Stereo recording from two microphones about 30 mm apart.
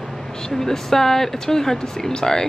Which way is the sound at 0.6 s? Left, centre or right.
Centre.